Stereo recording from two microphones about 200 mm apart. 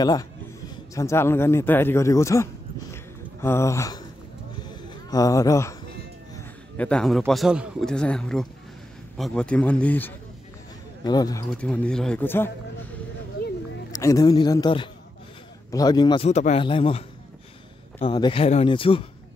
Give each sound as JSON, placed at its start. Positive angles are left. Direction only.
{"t": 0.0, "sound": "speech", "side_deg": 20}
{"t": 4.6, "sound": "a sound", "side_deg": 15}
{"t": 6.8, "sound": "a man's voice", "side_deg": 5}
{"t": 11.1, "sound": "speech", "side_deg": 20}
{"t": 11.5, "sound": "a man's voice", "side_deg": 5}
{"t": 13.9, "sound": "speech", "side_deg": 15}
{"t": 16.3, "sound": "speech", "side_deg": 35}